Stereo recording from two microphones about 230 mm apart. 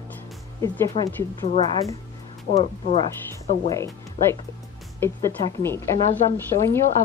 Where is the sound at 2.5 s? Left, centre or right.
Left.